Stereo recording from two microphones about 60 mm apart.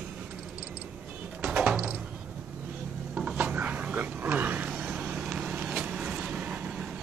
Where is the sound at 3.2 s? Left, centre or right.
Right.